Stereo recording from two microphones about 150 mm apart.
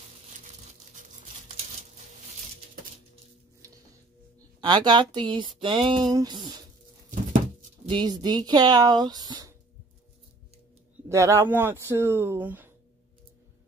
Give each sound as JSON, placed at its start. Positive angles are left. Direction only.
{"t": 3.6, "sound": "music", "side_deg": -20}
{"t": 4.6, "sound": "a woman's voice", "side_deg": -30}
{"t": 5.6, "sound": "a sound", "side_deg": -35}
{"t": 11.1, "sound": "speech", "side_deg": -20}